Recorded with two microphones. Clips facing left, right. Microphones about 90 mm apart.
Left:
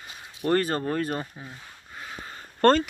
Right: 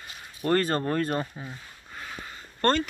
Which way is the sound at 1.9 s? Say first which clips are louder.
Even; 10° left (ahead or behind).